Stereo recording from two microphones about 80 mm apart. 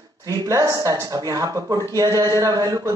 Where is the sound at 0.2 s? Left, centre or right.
Right.